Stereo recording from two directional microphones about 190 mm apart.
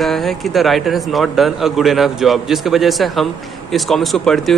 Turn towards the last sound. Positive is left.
turn(degrees=0)  # may be behind; listen again after turning